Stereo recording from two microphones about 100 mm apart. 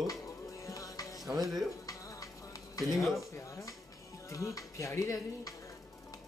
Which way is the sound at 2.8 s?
35° left (ahead or behind).